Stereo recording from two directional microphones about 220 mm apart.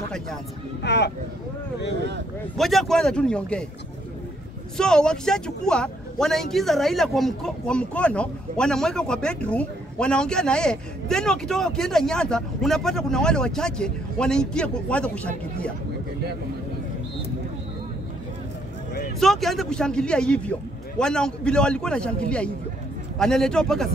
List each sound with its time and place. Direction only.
0.8 s speech: 50° left (ahead or behind)
2.5 s speech: centre (ahead or behind)
4.7 s speech: 5° left (ahead or behind)
19.1 s speech: centre (ahead or behind)